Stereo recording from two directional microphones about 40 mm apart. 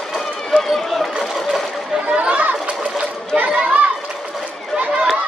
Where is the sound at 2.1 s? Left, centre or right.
Right.